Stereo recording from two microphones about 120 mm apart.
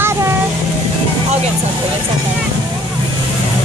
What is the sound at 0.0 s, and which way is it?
Vehicle, 25° right (ahead or behind).